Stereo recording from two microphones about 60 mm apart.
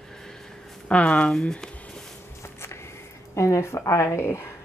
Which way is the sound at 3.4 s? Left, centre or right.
Left.